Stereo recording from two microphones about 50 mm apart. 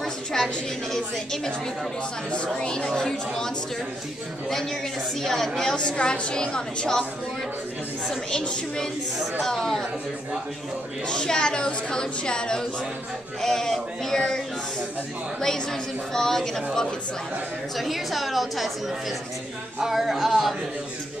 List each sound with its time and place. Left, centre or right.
0.0 s a sound: centre
0.9 s a woman's voice: centre
5.2 s a woman's voice: centre
8.3 s a woman's voice: centre
11.1 s a woman's voice: centre
15.4 s a woman's voice: centre
17.7 s a woman's voice: centre